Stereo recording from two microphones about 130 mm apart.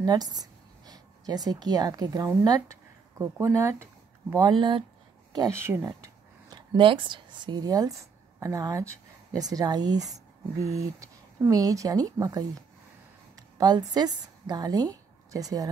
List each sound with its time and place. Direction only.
0.0 s speech: 30° right (ahead or behind)
4.5 s speech: 40° right (ahead or behind)
5.3 s a woman's voice: 25° right (ahead or behind)